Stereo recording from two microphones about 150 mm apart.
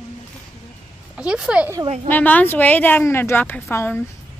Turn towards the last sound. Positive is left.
turn(degrees=15)  # may be behind; listen again after turning